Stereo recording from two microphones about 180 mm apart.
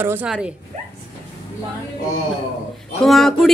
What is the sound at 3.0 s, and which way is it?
Speech, centre (ahead or behind).